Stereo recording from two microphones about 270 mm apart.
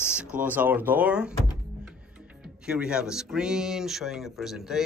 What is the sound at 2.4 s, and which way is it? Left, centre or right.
Speech, centre.